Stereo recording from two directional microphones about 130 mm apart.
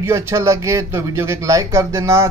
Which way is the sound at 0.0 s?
20° right (ahead or behind).